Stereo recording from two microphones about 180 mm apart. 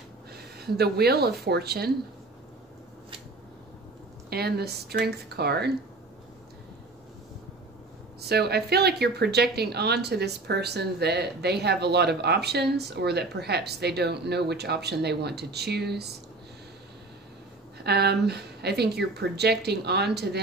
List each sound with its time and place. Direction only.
0.6 s a woman's voice: 60° right (ahead or behind)
4.3 s a woman's voice: 60° right (ahead or behind)
8.2 s a woman's voice: 65° right (ahead or behind)
17.8 s a woman's voice: 65° right (ahead or behind)